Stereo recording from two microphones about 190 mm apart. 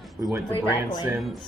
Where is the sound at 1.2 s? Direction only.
Centre (ahead or behind).